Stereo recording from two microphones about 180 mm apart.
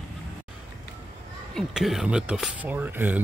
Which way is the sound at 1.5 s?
Centre (ahead or behind).